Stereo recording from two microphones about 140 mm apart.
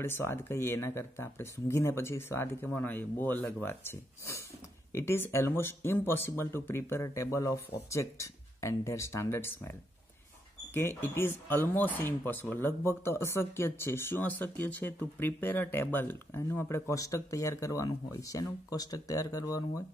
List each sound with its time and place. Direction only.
0.0 s speech: 15° left (ahead or behind)